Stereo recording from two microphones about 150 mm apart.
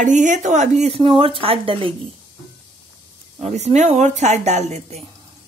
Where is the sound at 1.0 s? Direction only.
35° right (ahead or behind).